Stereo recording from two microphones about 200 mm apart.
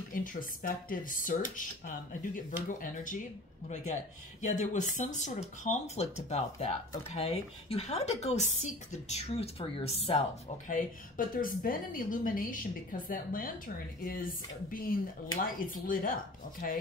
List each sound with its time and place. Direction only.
0.1 s a woman's voice: 40° left (ahead or behind)
4.4 s a woman's voice: 40° left (ahead or behind)
10.7 s a woman's voice: 45° left (ahead or behind)